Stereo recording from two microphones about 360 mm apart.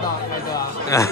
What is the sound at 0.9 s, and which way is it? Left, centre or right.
Speech, centre.